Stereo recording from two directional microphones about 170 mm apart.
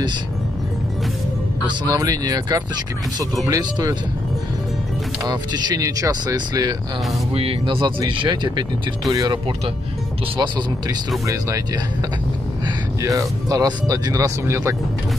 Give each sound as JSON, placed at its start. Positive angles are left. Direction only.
{"t": 1.9, "sound": "speech", "side_deg": -20}
{"t": 5.2, "sound": "speech", "side_deg": -25}